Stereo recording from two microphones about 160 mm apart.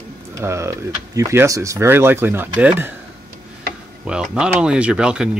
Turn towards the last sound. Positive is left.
turn(degrees=-5)  # may be behind; listen again after turning